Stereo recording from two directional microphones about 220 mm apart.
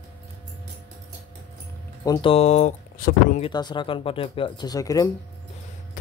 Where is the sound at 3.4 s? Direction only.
20° left (ahead or behind).